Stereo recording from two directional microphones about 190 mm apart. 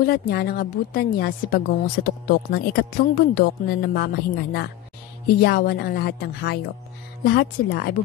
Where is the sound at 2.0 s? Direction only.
50° left (ahead or behind).